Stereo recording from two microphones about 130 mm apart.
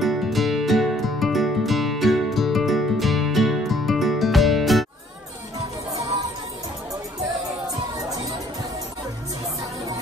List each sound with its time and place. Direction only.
0.0 s music: centre (ahead or behind)
7.6 s music: 25° right (ahead or behind)